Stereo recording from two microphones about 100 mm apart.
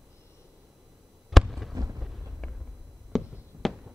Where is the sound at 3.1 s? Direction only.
Centre (ahead or behind).